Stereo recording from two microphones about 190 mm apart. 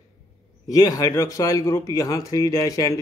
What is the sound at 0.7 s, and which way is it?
Speech, 20° left (ahead or behind).